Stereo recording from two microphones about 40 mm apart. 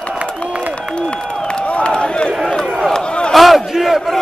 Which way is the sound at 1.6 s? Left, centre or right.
Left.